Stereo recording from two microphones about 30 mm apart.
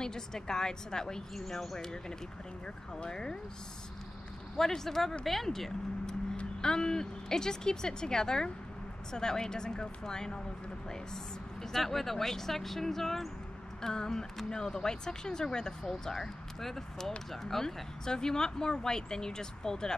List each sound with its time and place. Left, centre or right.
0.0 s speech: left
1.3 s speech: centre
3.1 s speech: left
4.6 s speech: centre
6.6 s speech: left
11.7 s speech: centre; by 20.0 s left